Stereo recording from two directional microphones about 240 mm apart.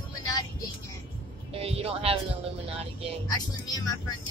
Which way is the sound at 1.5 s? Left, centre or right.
Right.